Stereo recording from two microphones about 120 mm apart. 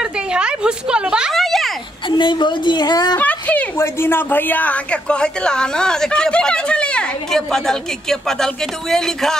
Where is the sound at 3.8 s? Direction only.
20° left (ahead or behind); by 9.4 s 5° left (ahead or behind).